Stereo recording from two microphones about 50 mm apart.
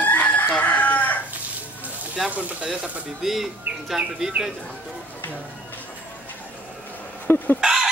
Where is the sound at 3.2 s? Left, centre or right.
Centre.